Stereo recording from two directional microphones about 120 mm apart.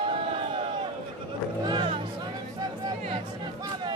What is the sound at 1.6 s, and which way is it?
Music, 40° right (ahead or behind).